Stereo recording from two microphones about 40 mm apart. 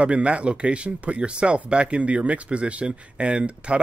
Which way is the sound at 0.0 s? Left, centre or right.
Right.